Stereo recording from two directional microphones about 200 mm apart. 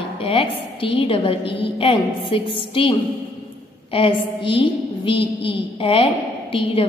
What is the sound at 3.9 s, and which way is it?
A woman's voice, 25° left (ahead or behind).